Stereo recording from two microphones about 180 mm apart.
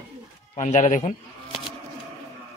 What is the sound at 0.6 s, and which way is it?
Speech, 40° left (ahead or behind).